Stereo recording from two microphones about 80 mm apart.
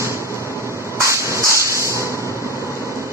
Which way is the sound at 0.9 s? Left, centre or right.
Right.